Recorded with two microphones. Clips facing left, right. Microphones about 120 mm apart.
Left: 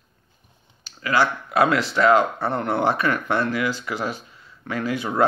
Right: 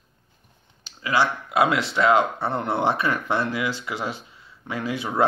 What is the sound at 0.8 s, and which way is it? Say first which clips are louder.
Speech: left 1 dB; 20° right (ahead or behind).